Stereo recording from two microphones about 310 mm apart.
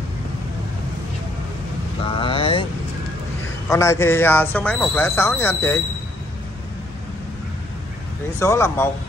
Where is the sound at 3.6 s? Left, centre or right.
Centre.